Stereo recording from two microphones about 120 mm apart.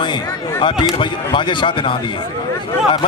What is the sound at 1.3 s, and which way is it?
Speech, 40° left (ahead or behind).